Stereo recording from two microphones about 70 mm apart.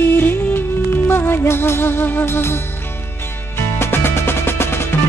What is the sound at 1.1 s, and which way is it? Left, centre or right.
Music, left.